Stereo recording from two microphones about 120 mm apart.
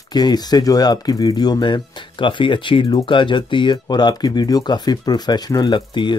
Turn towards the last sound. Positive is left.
turn(degrees=40)  # may be behind; listen again after turning